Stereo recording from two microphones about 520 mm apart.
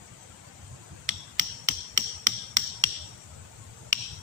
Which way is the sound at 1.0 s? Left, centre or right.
Right.